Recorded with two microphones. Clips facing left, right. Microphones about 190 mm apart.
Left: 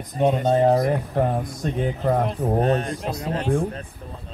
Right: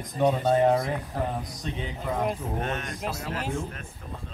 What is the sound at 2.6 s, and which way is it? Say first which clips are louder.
Speech: left 10 dB; 35° left (ahead or behind).